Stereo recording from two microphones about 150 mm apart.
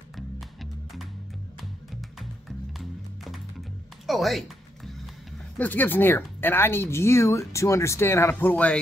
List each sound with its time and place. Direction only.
0.1 s music: centre (ahead or behind)
4.0 s music: centre (ahead or behind)
5.6 s speech: 10° left (ahead or behind)